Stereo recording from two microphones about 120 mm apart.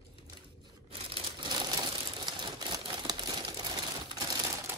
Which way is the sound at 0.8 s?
50° right (ahead or behind).